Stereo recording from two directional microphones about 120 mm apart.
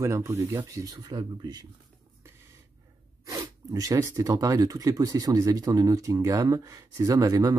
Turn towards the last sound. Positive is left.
turn(degrees=-30)  # may be behind; listen again after turning